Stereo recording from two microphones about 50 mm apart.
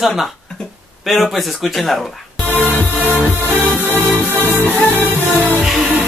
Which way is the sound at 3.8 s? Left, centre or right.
Right.